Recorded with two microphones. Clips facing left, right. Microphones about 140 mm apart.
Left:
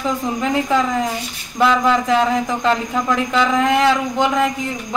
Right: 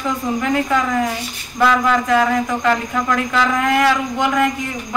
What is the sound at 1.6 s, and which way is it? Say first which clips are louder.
A man's voice: even; 25° left (ahead or behind).